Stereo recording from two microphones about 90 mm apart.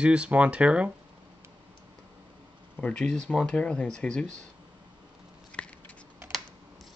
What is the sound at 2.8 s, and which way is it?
Speech, 10° left (ahead or behind).